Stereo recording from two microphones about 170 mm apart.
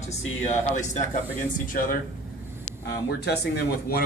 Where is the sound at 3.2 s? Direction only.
75° left (ahead or behind).